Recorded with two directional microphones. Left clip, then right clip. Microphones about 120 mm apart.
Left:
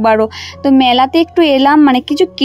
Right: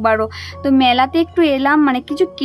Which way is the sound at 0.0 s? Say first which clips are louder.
Left 5 dB; 35° left (ahead or behind).